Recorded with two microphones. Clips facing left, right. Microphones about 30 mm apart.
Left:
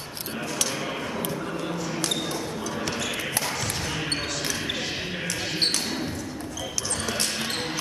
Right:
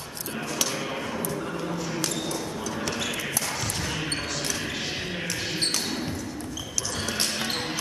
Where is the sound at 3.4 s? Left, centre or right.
Centre.